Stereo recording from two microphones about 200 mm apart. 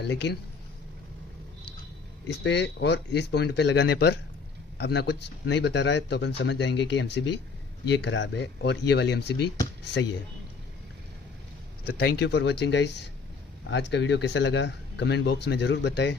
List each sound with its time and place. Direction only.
0.0 s speech: 55° left (ahead or behind)
2.2 s speech: 60° left (ahead or behind)
11.8 s speech: 50° left (ahead or behind)